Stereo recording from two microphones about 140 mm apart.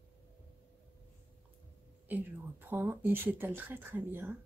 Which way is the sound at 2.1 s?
15° right (ahead or behind).